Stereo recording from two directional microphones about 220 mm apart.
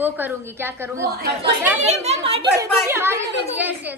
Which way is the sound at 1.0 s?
45° right (ahead or behind).